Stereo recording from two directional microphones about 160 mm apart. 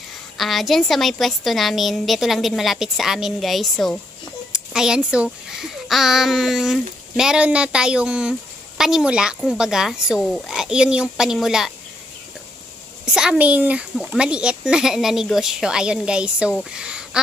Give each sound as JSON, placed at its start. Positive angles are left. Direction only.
{"t": 0.4, "sound": "a child's voice", "side_deg": 0}
{"t": 13.0, "sound": "a child's voice", "side_deg": -5}
{"t": 16.7, "sound": "a sound", "side_deg": -5}